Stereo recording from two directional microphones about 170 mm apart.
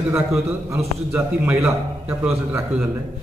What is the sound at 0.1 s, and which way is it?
A man's voice, 15° right (ahead or behind).